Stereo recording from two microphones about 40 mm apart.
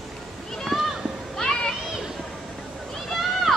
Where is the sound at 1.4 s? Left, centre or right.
Centre.